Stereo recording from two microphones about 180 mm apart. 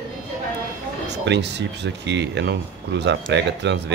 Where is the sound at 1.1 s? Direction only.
70° right (ahead or behind).